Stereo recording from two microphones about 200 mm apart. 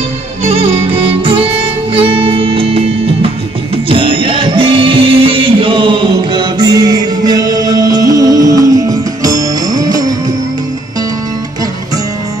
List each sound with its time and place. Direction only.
0.4 s music: 30° right (ahead or behind)